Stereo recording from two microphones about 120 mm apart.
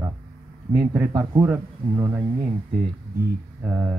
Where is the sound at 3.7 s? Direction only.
20° right (ahead or behind).